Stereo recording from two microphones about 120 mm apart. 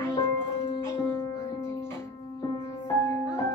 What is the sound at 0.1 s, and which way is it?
Music, 20° left (ahead or behind).